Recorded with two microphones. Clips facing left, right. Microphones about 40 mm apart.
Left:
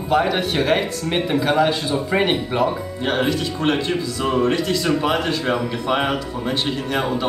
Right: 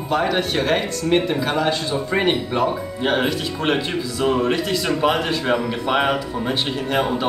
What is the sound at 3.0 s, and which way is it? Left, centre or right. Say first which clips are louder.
Speech: even; centre.